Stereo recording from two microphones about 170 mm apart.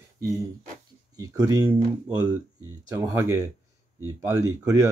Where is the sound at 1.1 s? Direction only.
20° right (ahead or behind).